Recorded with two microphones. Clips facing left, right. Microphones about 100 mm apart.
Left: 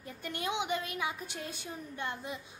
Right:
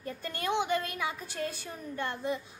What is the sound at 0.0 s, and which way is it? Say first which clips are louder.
A woman's voice: right 3 dB; 15° left (ahead or behind).